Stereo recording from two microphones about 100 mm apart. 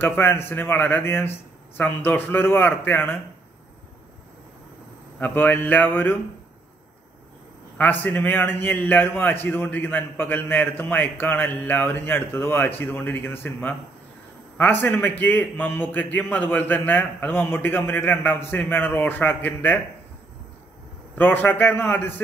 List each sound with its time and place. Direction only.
0.0 s a man's voice: 20° left (ahead or behind)
5.2 s speech: 15° left (ahead or behind)
7.7 s a man's voice: 15° left (ahead or behind)
21.2 s a man's voice: 20° left (ahead or behind)